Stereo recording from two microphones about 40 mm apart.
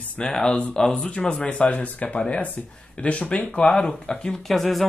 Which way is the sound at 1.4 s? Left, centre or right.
Left.